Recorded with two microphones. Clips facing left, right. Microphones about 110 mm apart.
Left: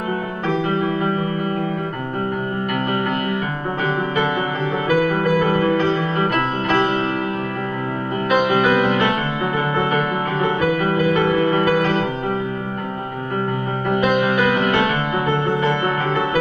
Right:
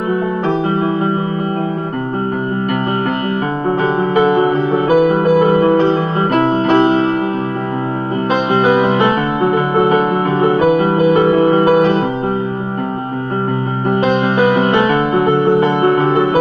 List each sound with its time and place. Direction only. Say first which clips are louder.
0.5 s music: right 2 dB; 35° right (ahead or behind)
4.1 s music: right 9 dB; 35° right (ahead or behind)
4.9 s music: right 6 dB; 20° right (ahead or behind)
8.3 s music: right 3 dB; 30° right (ahead or behind)
10.7 s music: right 6 dB; 25° right (ahead or behind)
13.8 s music: right 3 dB; 30° right (ahead or behind)